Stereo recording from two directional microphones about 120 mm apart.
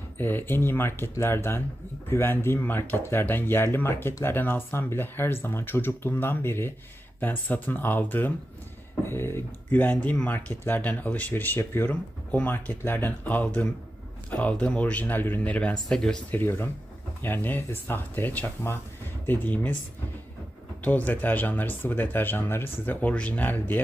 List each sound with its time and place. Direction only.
0.2 s speech: 15° left (ahead or behind)
16.3 s speech: 20° left (ahead or behind)
20.8 s speech: 15° left (ahead or behind)